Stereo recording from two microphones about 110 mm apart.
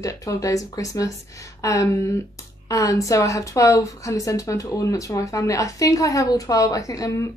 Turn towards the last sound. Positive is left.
turn(degrees=30)  # may be behind; listen again after turning